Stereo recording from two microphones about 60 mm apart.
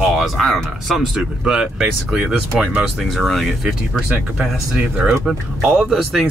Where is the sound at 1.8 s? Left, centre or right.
Centre.